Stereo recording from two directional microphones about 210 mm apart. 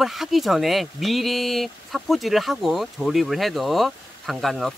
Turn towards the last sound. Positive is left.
turn(degrees=0)  # may be behind; listen again after turning